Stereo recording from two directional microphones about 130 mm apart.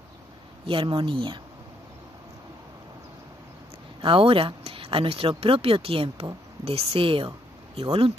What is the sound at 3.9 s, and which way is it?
Speech, 45° right (ahead or behind).